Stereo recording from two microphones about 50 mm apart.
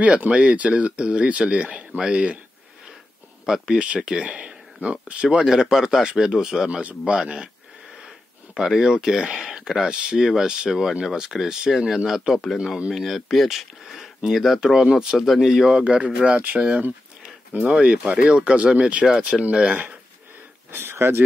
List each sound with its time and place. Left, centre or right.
0.3 s speech: right
3.4 s speech: centre
3.7 s speech: right
5.5 s speech: centre
6.8 s speech: right
8.5 s speech: centre
15.1 s speech: centre
15.8 s speech: right
19.0 s speech: centre
19.4 s speech: right
20.7 s speech: right